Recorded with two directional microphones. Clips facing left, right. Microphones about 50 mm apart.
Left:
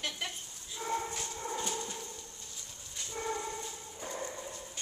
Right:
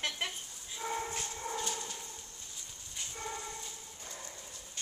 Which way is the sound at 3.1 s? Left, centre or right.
Centre.